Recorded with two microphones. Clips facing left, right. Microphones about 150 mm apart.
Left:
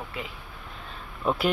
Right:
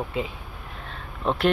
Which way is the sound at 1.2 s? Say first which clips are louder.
Right 1 dB; 5° left (ahead or behind).